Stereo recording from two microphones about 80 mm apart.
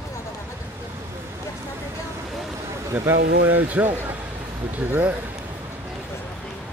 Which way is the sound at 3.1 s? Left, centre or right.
Right.